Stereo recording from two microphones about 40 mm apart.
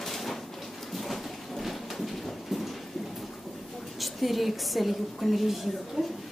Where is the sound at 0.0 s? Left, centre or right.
Centre.